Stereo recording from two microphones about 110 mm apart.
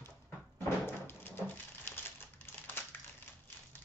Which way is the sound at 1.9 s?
20° left (ahead or behind).